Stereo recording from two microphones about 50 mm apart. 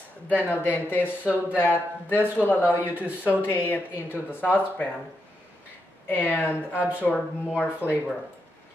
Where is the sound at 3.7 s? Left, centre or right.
Left.